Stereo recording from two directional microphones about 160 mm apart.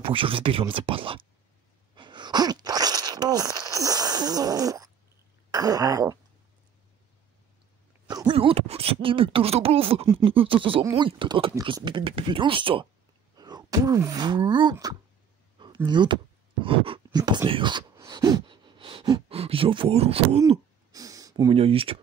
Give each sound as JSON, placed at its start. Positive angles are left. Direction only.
{"t": 0.0, "sound": "speech", "side_deg": -35}
{"t": 2.0, "sound": "sneeze", "side_deg": -30}
{"t": 5.5, "sound": "speech", "side_deg": -25}
{"t": 8.1, "sound": "speech", "side_deg": -30}
{"t": 16.6, "sound": "a sound", "side_deg": -35}
{"t": 19.2, "sound": "speech", "side_deg": -35}
{"t": 20.4, "sound": "a sound", "side_deg": -20}
{"t": 21.5, "sound": "speech", "side_deg": -35}